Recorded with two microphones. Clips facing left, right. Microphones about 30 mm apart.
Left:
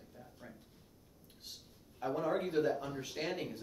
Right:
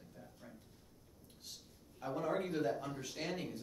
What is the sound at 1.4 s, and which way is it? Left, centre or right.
Speech, centre.